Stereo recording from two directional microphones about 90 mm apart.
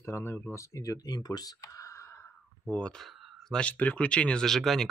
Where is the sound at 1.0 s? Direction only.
45° left (ahead or behind); by 2.2 s 30° left (ahead or behind).